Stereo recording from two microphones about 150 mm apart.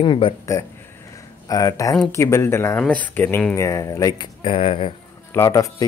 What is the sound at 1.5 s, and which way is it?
Speech, 25° left (ahead or behind).